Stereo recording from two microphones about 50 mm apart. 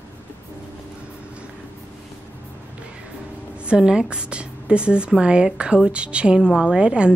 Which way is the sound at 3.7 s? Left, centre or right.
Centre.